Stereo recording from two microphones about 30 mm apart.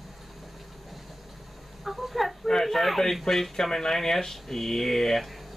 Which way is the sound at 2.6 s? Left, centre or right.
Centre.